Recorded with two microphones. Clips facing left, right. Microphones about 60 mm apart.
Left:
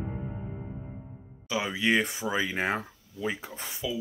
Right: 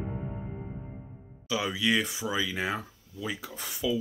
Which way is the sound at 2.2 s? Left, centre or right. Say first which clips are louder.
Left 2 dB; left.